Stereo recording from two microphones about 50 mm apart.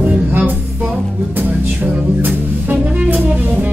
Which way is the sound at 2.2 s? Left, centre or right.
Right.